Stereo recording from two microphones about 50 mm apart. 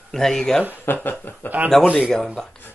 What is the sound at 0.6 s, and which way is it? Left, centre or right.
Speech, left.